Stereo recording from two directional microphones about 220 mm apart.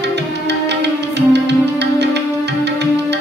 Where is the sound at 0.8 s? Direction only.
50° right (ahead or behind).